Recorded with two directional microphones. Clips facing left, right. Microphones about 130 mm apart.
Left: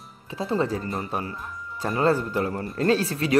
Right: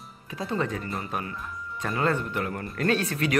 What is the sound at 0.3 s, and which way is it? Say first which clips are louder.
Speech: left 4 dB; 30° left (ahead or behind).